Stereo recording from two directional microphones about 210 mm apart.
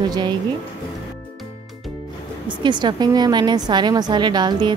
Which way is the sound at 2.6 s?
20° right (ahead or behind).